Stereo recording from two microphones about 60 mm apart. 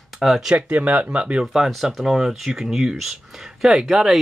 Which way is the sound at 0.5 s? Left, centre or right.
Right.